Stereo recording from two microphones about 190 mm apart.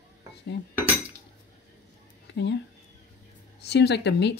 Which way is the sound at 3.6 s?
60° left (ahead or behind).